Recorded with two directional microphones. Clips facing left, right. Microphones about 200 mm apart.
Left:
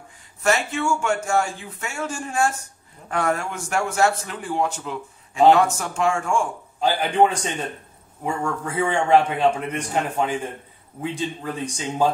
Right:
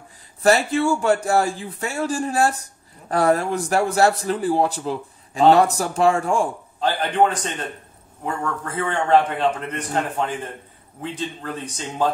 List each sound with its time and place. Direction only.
0.4 s a man's voice: 35° right (ahead or behind)
6.8 s a man's voice: 10° left (ahead or behind)
8.3 s a man's voice: 10° left (ahead or behind)